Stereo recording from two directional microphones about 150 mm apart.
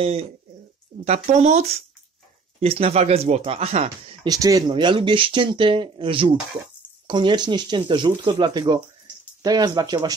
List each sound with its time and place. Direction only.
0.0 s speech: 40° right (ahead or behind)
4.3 s speech: 25° right (ahead or behind)